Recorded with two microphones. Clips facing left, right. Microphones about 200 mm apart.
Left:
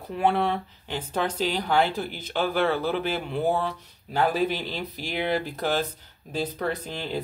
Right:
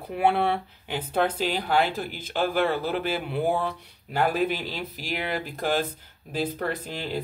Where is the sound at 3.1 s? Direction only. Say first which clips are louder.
Even; 10° right (ahead or behind).